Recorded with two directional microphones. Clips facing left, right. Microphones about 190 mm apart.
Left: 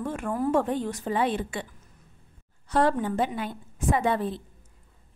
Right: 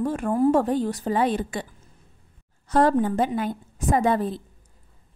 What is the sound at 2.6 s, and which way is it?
A woman's voice, 45° right (ahead or behind).